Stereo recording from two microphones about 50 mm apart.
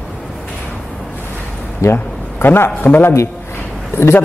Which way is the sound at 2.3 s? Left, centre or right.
Left.